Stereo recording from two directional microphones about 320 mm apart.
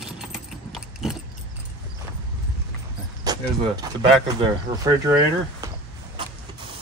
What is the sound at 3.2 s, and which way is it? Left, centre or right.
Speech, centre.